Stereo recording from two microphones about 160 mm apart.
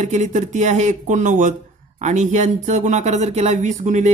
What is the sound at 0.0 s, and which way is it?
Speech, 50° right (ahead or behind).